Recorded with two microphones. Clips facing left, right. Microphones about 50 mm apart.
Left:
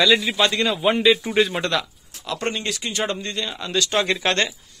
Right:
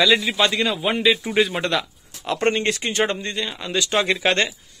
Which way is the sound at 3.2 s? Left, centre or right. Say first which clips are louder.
Right 1 dB; centre.